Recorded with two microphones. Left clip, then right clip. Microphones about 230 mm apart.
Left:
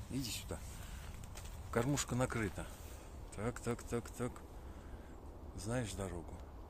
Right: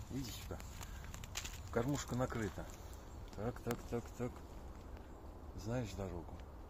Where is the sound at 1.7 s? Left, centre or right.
Left.